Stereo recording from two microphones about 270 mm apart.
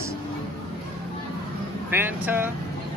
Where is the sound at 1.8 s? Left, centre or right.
Centre.